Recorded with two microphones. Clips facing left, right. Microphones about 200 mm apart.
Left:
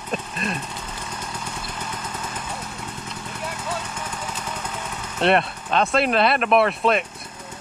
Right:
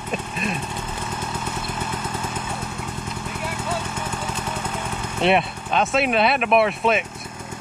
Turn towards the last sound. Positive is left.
turn(degrees=0)  # may be behind; listen again after turning